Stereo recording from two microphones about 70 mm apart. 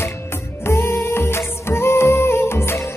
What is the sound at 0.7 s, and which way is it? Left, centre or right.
Music, left.